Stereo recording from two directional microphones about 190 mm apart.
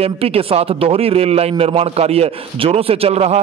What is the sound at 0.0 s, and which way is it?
A man's voice, 30° right (ahead or behind).